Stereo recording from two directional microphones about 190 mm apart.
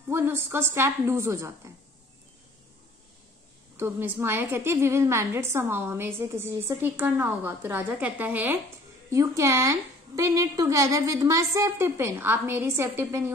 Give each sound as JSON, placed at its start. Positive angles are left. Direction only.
{"t": 0.1, "sound": "a woman's voice", "side_deg": -15}
{"t": 3.7, "sound": "a woman's voice", "side_deg": -10}